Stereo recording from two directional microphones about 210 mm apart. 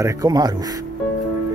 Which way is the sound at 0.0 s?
15° right (ahead or behind).